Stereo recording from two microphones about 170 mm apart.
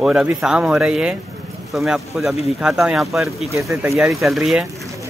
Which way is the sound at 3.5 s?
15° right (ahead or behind).